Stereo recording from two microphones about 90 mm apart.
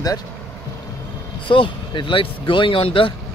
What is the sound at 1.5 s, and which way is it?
Speech, 70° left (ahead or behind).